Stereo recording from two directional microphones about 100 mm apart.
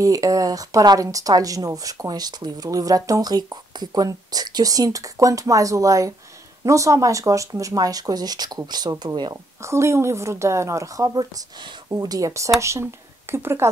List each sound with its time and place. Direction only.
0.0 s speech: 35° right (ahead or behind)
9.6 s a woman's voice: 30° right (ahead or behind)